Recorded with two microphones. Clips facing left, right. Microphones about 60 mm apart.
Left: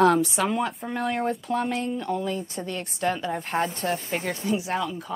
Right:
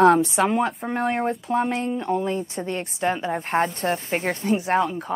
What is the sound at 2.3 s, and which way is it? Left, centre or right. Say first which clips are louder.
Speech: right 3 dB; right.